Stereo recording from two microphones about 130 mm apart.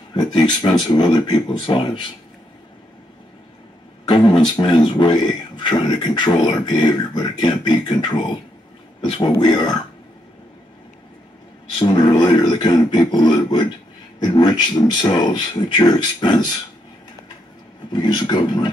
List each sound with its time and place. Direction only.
0.1 s speech: 35° left (ahead or behind)
4.1 s speech: 35° left (ahead or behind)
11.8 s speech: 30° left (ahead or behind)
17.9 s speech: 35° left (ahead or behind)